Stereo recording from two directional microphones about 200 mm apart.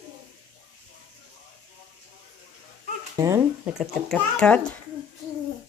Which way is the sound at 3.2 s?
15° right (ahead or behind).